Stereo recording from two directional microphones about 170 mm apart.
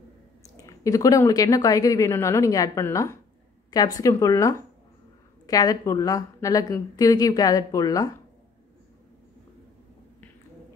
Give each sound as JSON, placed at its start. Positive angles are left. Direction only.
{"t": 0.6, "sound": "a woman's voice", "side_deg": 20}